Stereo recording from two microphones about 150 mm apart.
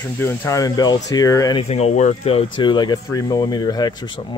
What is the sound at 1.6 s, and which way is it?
Speech, 45° left (ahead or behind).